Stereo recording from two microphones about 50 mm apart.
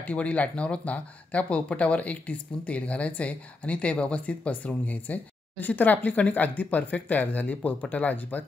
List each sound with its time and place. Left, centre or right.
0.0 s speech: left